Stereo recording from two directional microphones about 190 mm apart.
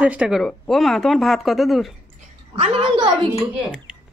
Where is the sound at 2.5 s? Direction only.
30° right (ahead or behind).